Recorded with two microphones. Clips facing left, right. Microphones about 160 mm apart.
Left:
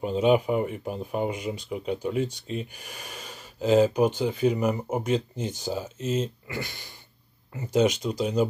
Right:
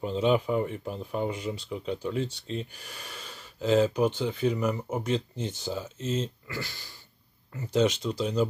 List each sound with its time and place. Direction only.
0.0 s speech: 15° left (ahead or behind)